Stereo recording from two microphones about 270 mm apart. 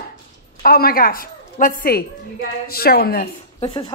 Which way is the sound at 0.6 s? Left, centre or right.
Left.